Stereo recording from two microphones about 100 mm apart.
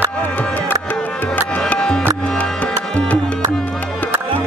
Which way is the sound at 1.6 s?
10° left (ahead or behind).